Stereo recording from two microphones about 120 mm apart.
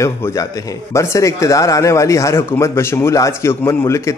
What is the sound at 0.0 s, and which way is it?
Speech, 25° left (ahead or behind).